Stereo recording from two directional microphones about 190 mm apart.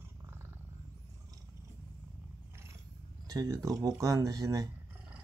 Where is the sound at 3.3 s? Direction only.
20° right (ahead or behind).